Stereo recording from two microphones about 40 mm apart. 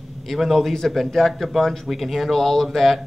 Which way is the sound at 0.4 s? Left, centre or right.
Centre.